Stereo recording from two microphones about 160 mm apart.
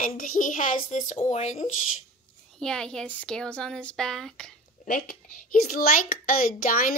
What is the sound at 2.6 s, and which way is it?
Speech, 5° left (ahead or behind).